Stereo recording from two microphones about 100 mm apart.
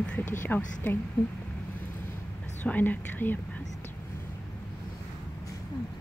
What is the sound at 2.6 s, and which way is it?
Speech, 15° left (ahead or behind).